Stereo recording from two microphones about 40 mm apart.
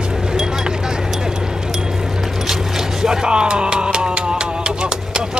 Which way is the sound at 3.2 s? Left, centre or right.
Right.